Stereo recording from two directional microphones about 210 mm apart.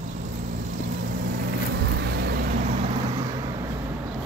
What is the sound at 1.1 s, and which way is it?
Vehicle, 45° right (ahead or behind).